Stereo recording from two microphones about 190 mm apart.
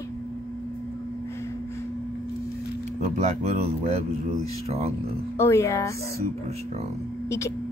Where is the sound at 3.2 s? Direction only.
35° right (ahead or behind).